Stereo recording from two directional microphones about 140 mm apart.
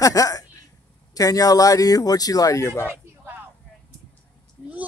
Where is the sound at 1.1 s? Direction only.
25° left (ahead or behind).